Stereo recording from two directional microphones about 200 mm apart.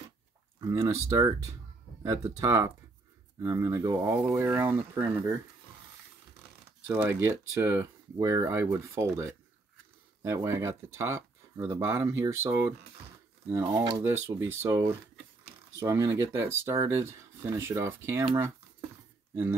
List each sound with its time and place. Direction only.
0.6 s speech: 15° right (ahead or behind)
6.9 s speech: 10° right (ahead or behind)